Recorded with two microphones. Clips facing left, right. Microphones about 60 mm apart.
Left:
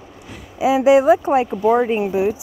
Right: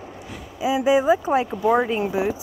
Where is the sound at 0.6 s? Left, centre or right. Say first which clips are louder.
Left 6 dB; left.